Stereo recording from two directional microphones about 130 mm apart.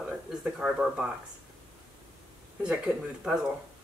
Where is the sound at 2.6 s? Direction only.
10° right (ahead or behind).